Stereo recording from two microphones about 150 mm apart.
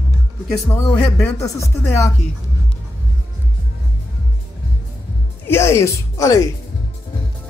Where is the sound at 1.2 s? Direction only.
20° left (ahead or behind).